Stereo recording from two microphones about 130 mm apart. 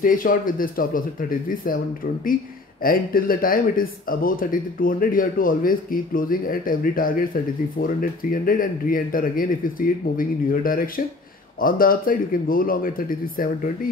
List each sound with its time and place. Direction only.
0.0 s speech: 90° left
2.8 s speech: 90° left